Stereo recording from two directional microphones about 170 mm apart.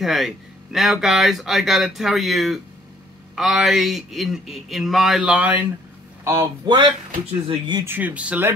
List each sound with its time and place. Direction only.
0.0 s speech: centre (ahead or behind)
6.6 s speech: 25° right (ahead or behind)
7.8 s speech: 10° right (ahead or behind)